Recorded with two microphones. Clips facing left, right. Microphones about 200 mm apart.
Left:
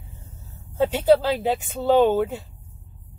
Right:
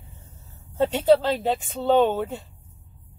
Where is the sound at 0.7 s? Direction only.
5° left (ahead or behind).